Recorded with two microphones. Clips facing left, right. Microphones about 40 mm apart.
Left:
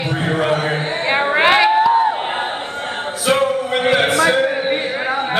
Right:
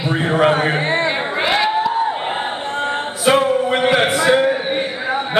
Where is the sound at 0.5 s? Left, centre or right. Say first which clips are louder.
Right 2 dB; right.